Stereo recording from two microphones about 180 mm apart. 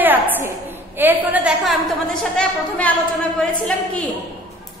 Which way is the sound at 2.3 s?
5° left (ahead or behind).